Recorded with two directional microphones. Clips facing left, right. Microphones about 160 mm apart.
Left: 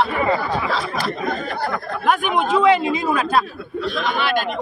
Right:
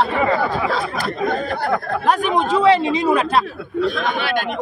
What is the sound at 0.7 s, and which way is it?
Speech, 50° right (ahead or behind).